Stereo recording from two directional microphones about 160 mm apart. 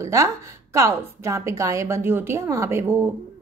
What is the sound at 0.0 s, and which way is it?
A woman's voice, 20° right (ahead or behind).